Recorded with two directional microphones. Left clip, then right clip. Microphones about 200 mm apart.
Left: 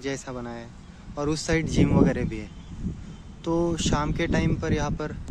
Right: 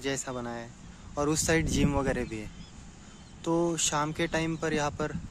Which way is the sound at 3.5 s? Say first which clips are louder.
Left 3 dB; 15° right (ahead or behind).